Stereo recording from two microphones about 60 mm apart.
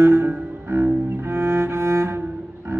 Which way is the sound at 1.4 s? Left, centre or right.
Right.